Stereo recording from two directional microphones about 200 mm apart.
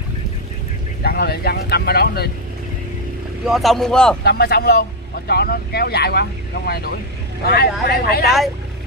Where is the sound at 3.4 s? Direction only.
Centre (ahead or behind).